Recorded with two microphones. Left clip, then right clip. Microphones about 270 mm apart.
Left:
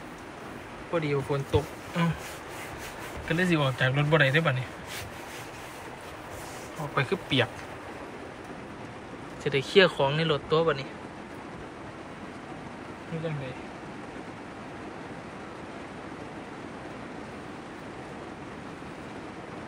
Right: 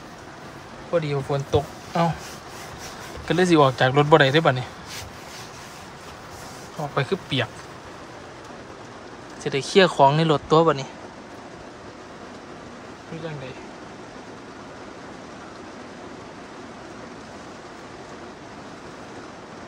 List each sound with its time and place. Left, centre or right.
0.9 s speech: centre
3.3 s speech: centre
7.0 s speech: centre
9.4 s speech: centre